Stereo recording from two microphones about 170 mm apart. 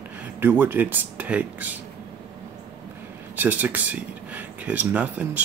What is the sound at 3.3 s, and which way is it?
Speech, 10° right (ahead or behind).